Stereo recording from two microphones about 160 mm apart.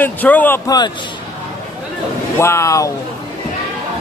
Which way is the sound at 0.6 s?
25° left (ahead or behind).